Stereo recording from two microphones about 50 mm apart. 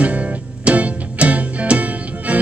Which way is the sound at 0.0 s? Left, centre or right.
Right.